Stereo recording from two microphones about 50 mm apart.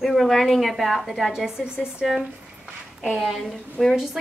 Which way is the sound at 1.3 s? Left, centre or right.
Centre.